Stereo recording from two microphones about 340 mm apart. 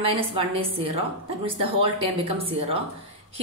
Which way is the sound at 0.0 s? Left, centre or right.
Centre.